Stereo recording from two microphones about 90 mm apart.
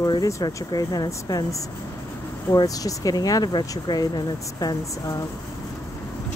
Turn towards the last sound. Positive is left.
turn(degrees=45)  # may be behind; listen again after turning